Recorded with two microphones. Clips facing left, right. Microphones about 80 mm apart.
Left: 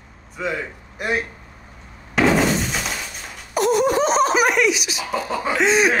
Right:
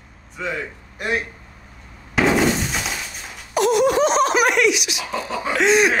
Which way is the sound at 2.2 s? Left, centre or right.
Centre.